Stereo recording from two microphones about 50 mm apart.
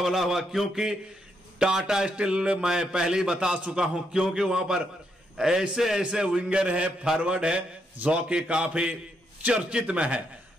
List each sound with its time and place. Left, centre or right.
0.0 s a man's voice: centre; by 10.2 s right